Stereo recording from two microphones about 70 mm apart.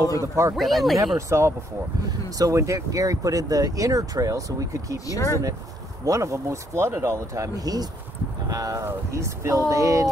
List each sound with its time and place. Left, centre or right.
0.0 s speech: left
0.6 s speech: centre
1.1 s speech: right
2.0 s speech: right
4.9 s speech: left
6.0 s speech: right
8.8 s speech: right